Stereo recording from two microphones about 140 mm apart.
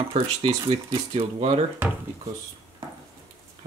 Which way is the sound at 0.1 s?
45° right (ahead or behind).